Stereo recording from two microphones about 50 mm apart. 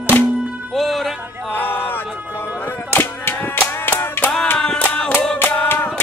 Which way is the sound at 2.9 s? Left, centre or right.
Left.